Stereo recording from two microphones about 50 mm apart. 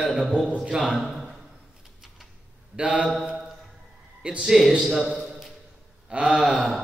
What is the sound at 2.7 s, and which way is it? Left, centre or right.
Speech, right.